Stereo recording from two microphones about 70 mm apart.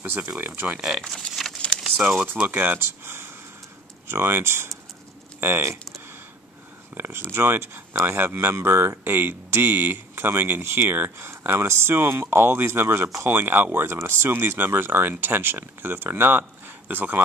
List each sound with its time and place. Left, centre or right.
0.0 s speech: right
1.4 s a sound: centre
2.0 s speech: centre
2.3 s speech: right
7.0 s speech: right